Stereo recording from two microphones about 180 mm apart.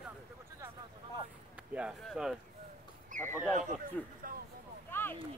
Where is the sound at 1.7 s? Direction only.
5° right (ahead or behind).